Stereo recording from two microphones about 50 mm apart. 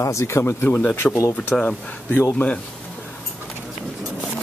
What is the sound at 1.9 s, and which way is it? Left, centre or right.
Speech, left.